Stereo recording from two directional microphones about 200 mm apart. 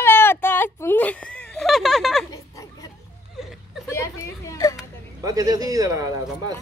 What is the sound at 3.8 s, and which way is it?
Speech, 15° left (ahead or behind).